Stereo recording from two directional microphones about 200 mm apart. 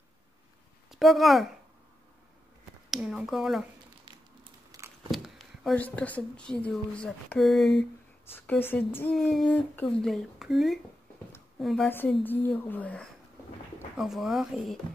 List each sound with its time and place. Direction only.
0.8 s a woman's voice: centre (ahead or behind)
2.9 s speech: centre (ahead or behind)
4.7 s a sound: 15° right (ahead or behind)
5.1 s a woman's voice: centre (ahead or behind)